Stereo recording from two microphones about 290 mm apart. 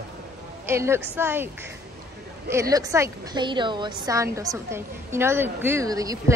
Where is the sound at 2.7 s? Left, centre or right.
Centre.